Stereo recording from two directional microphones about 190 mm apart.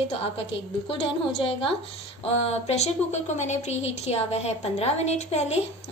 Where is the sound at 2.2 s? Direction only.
35° left (ahead or behind).